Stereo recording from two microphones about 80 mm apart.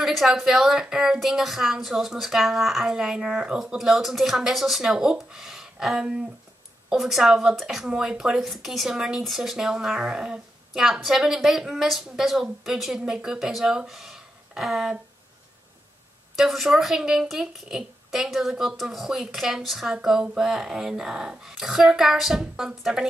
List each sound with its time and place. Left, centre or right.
0.0 s speech: centre
16.3 s speech: centre